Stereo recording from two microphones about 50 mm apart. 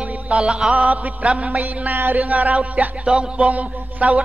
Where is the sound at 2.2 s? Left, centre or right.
Right.